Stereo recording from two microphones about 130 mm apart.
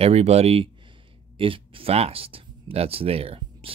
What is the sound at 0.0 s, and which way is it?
Speech, 55° right (ahead or behind).